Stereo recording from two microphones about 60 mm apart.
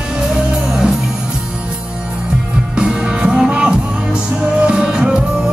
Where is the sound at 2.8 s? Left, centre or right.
Centre.